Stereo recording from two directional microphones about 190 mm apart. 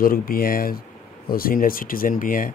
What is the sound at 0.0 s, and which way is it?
Speech, 50° left (ahead or behind).